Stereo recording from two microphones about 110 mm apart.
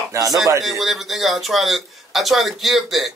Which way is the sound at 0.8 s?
Centre (ahead or behind).